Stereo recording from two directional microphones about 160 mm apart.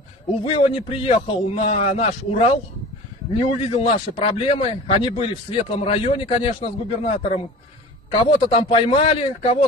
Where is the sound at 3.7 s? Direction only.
35° left (ahead or behind).